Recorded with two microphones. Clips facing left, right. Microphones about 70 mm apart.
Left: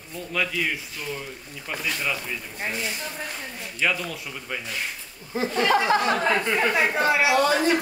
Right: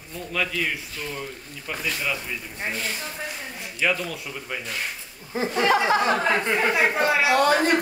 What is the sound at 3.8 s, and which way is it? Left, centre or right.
Speech, centre.